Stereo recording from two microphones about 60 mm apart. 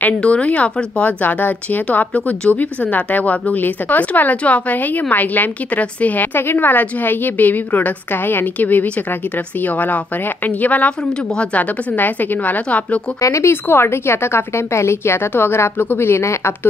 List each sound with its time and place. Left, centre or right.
0.0 s a woman's voice: centre
13.2 s speech: left
13.7 s a woman's voice: left